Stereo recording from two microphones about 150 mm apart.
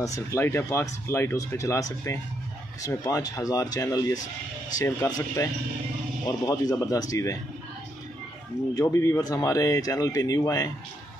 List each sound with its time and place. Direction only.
0.0 s speech: 20° left (ahead or behind)
8.7 s speech: 20° left (ahead or behind)